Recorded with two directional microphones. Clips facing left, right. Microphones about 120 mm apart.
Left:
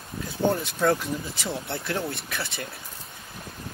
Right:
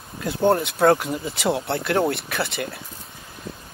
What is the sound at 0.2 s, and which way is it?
Speech, 65° right (ahead or behind).